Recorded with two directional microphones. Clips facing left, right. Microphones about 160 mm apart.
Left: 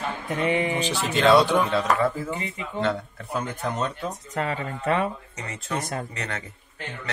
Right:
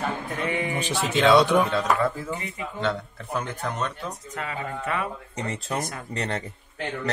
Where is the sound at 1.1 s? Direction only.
5° right (ahead or behind).